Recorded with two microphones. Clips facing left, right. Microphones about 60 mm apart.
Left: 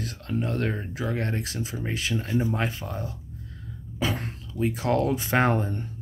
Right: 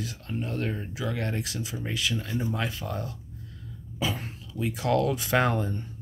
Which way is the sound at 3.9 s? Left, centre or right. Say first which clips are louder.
Left 2 dB; left.